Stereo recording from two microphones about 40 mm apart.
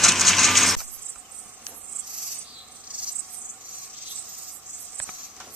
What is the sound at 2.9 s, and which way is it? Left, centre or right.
Owl, right.